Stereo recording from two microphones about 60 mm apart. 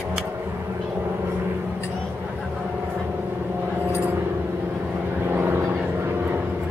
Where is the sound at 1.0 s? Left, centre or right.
Right.